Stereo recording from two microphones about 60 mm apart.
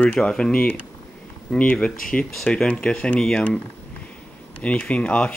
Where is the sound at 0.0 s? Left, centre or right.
Centre.